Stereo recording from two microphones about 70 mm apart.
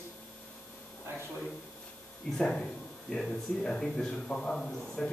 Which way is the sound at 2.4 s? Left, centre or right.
Centre.